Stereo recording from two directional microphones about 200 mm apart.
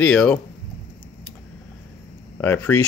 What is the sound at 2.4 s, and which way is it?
Speech, 10° left (ahead or behind).